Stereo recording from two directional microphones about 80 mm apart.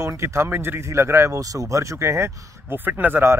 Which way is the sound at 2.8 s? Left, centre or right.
Right.